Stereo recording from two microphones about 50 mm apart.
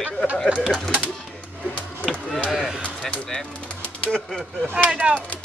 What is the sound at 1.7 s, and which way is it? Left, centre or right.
Chop, left.